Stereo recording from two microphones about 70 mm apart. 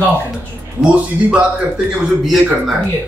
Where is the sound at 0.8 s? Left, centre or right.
Centre.